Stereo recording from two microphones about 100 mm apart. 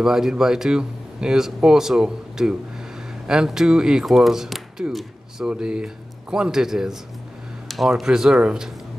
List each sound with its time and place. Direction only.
0.0 s speech: 5° right (ahead or behind)